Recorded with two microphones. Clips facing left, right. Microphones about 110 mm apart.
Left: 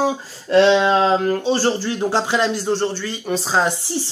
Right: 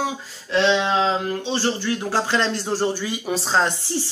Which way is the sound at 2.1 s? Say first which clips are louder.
Left 2 dB; 10° left (ahead or behind).